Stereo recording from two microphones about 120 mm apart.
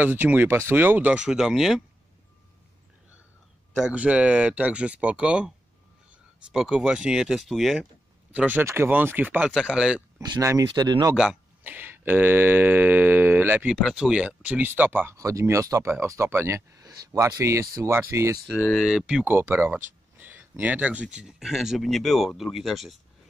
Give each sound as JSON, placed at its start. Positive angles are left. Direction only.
{"t": 0.0, "sound": "speech", "side_deg": -15}
{"t": 3.8, "sound": "speech", "side_deg": -10}
{"t": 6.5, "sound": "speech", "side_deg": -5}
{"t": 8.3, "sound": "speech", "side_deg": -15}
{"t": 10.4, "sound": "speech", "side_deg": -25}
{"t": 11.1, "sound": "speech", "side_deg": -10}
{"t": 13.7, "sound": "speech", "side_deg": -5}
{"t": 15.1, "sound": "speech", "side_deg": -25}
{"t": 18.5, "sound": "speech", "side_deg": -5}
{"t": 19.2, "sound": "speech", "side_deg": -15}